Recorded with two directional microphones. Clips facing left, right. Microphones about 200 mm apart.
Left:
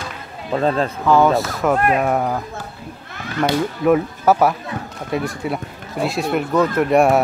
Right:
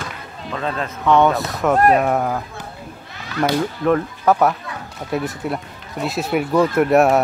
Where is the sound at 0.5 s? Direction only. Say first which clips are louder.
Left 7 dB; 35° left (ahead or behind).